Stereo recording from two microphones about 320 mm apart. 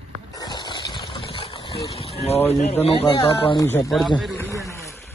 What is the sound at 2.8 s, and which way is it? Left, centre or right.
Speech, centre.